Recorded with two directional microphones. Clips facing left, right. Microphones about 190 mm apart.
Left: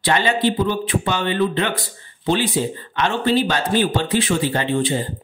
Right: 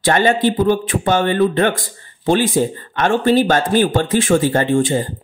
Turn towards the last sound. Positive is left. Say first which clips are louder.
# right 5 dB
turn(degrees=-45)  # may be behind; listen again after turning